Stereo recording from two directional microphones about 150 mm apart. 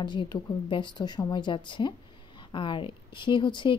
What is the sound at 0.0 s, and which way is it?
Speech, 30° left (ahead or behind).